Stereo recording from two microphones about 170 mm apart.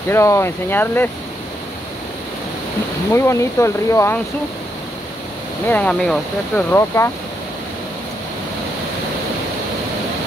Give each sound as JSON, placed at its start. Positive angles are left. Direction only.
{"t": 0.1, "sound": "speech", "side_deg": 15}
{"t": 3.1, "sound": "speech", "side_deg": 15}
{"t": 5.7, "sound": "speech", "side_deg": 5}